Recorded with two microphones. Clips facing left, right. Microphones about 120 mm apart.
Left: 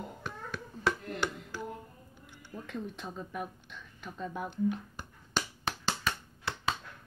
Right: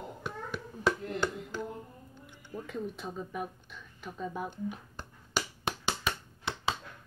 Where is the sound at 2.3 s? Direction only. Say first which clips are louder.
Right 3 dB; 20° right (ahead or behind).